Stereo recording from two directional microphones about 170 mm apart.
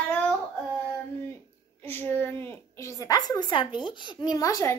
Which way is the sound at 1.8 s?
15° left (ahead or behind).